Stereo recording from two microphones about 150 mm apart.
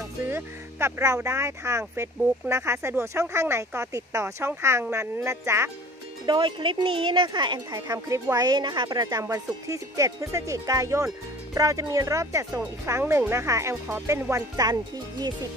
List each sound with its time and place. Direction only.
0.3 s speech: 15° right (ahead or behind)
6.2 s speech: 30° right (ahead or behind)